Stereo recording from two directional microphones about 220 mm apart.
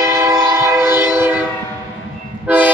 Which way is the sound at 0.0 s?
15° right (ahead or behind).